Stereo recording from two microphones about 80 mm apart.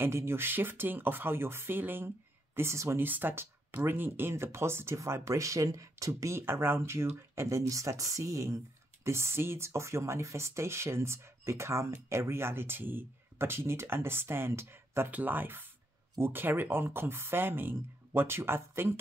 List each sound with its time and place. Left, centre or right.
0.0 s speech: right